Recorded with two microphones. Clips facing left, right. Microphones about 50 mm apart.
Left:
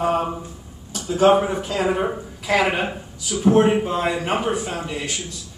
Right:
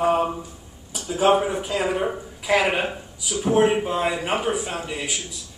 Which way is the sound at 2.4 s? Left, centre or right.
Centre.